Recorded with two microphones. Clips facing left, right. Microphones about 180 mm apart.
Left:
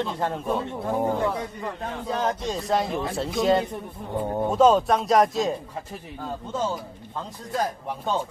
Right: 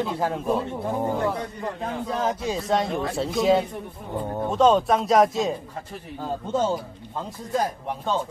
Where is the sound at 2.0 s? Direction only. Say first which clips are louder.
Even; centre (ahead or behind).